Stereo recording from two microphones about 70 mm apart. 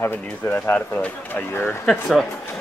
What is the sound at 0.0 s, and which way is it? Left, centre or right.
Speech, left.